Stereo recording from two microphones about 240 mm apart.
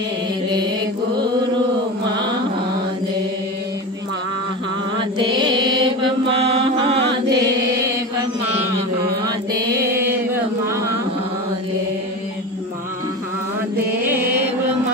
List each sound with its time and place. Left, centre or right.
5.3 s mantra: centre
7.0 s chant: right
9.2 s chant: centre